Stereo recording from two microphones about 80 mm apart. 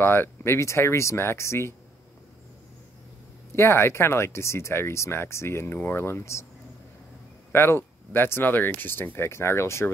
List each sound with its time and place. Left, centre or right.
0.0 s speech: left
3.5 s speech: left
7.5 s speech: left